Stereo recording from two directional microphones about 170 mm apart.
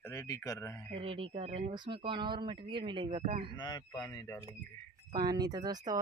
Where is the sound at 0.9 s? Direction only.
35° right (ahead or behind).